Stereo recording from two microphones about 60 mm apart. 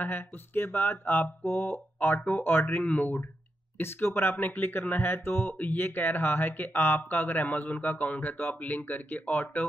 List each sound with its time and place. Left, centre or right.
0.0 s speech: left